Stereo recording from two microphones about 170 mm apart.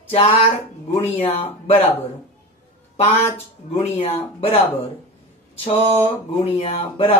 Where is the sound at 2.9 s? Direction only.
40° left (ahead or behind).